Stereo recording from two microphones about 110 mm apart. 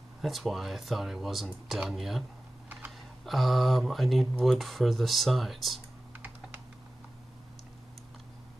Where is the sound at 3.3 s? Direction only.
Centre (ahead or behind).